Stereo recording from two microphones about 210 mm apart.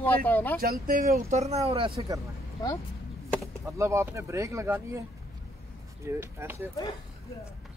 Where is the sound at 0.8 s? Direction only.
40° right (ahead or behind).